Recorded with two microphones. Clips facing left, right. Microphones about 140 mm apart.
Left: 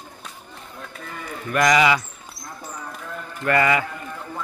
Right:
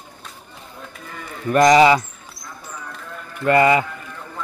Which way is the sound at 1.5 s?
30° right (ahead or behind).